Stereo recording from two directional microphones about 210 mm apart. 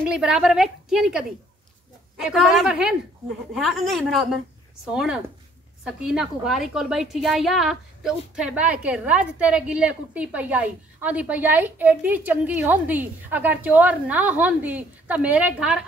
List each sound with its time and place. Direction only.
0.0 s a woman's voice: 5° right (ahead or behind)